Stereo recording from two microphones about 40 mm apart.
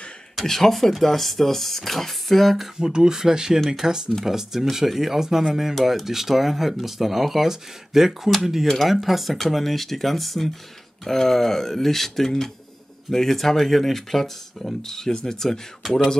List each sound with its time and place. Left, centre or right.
0.4 s speech: centre
2.8 s speech: centre